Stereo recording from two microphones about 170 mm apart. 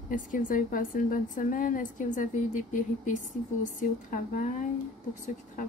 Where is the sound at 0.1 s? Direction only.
55° left (ahead or behind).